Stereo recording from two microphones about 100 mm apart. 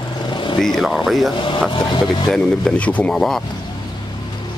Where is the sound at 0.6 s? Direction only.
Centre (ahead or behind).